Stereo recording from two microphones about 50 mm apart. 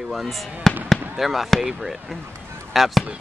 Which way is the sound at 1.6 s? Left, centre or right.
Centre.